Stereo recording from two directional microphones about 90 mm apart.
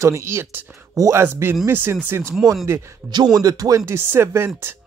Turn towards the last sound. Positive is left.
turn(degrees=-30)  # may be behind; listen again after turning